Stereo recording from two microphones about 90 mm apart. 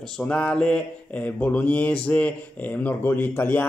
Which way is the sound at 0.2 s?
10° left (ahead or behind).